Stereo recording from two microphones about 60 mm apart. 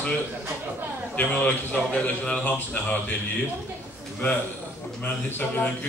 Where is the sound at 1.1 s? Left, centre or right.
Left.